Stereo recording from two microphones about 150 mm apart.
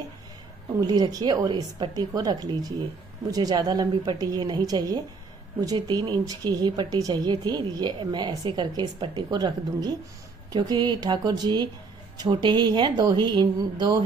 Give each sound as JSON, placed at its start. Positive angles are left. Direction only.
{"t": 0.7, "sound": "speech", "side_deg": -25}